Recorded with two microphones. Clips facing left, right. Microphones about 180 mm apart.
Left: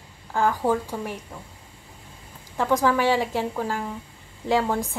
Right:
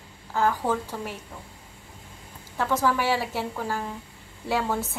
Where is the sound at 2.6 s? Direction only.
15° left (ahead or behind).